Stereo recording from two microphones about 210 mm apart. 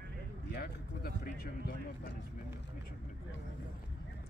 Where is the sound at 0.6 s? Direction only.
45° left (ahead or behind).